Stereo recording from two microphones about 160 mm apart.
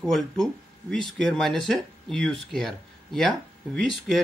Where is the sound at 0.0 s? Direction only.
Centre (ahead or behind).